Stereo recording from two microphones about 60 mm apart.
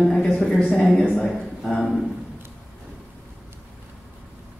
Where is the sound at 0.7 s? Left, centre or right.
Centre.